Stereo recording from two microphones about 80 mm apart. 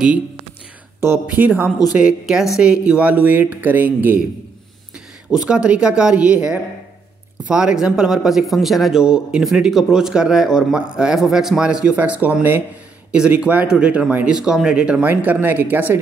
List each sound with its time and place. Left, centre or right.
1.2 s speech: centre
2.0 s a man's voice: centre
5.3 s a man's voice: centre
15.0 s speech: right